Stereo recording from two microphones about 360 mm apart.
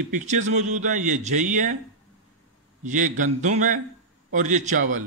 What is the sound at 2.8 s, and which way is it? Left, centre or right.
A man's voice, right.